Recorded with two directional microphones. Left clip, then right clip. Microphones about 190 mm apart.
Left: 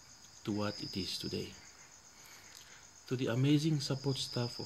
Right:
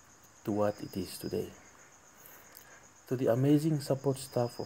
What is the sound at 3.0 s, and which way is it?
Speech, 5° left (ahead or behind).